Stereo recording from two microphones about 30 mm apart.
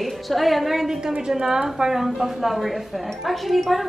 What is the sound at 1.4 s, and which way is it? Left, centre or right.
Speech, right.